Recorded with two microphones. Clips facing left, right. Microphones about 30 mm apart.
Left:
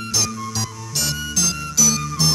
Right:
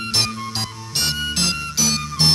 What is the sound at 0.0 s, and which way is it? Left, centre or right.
Music, right.